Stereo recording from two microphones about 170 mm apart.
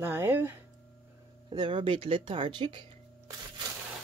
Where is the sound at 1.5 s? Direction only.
30° right (ahead or behind).